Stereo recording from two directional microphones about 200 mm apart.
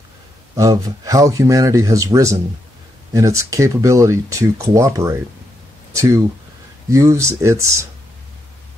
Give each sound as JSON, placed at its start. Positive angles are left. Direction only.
{"t": 0.6, "sound": "speech", "side_deg": -15}